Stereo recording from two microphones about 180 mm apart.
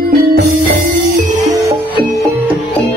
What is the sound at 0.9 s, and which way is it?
Music, 45° right (ahead or behind).